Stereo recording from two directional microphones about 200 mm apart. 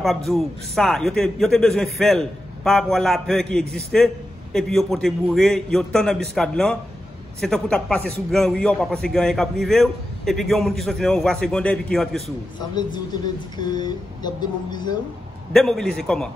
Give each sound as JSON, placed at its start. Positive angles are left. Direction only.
{"t": 0.0, "sound": "a man's voice", "side_deg": 0}
{"t": 12.5, "sound": "speech", "side_deg": 20}
{"t": 15.5, "sound": "a man's voice", "side_deg": 0}